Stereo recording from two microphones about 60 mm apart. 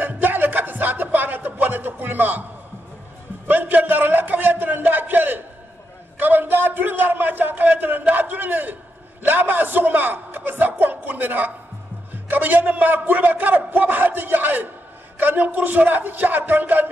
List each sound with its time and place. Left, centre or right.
0.0 s music: right
3.4 s a sound: right
10.6 s music: right
12.1 s a man's voice: right